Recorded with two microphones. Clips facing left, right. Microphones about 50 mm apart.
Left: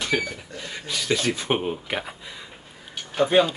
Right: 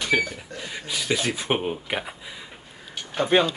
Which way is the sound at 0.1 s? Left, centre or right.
Centre.